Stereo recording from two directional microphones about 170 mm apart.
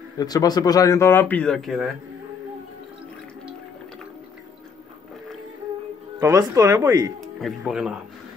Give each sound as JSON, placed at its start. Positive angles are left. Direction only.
{"t": 0.2, "sound": "speech", "side_deg": 20}
{"t": 6.1, "sound": "speech", "side_deg": -20}
{"t": 7.2, "sound": "speech", "side_deg": 0}